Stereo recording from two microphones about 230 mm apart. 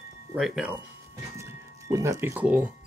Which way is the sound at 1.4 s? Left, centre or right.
Centre.